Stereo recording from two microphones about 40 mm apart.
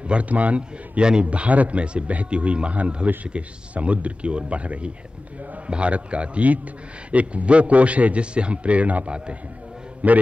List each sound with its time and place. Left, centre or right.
0.1 s a man's voice: right